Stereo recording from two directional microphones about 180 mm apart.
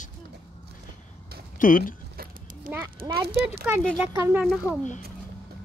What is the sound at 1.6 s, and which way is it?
Speech, 50° left (ahead or behind).